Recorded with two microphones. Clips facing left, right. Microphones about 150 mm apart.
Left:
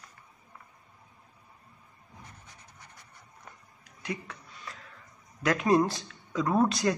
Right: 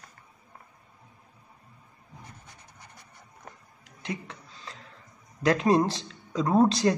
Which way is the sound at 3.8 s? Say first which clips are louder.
Right 1 dB; 25° right (ahead or behind).